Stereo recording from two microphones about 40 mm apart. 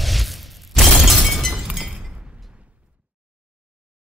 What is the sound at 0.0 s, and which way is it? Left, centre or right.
Shatter, centre.